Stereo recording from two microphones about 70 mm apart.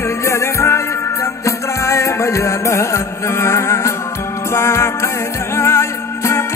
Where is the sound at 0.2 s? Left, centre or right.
Left.